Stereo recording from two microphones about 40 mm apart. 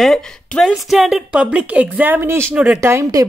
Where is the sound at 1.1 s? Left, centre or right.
Centre.